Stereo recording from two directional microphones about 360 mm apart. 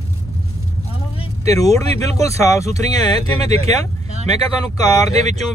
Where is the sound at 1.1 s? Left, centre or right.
Centre.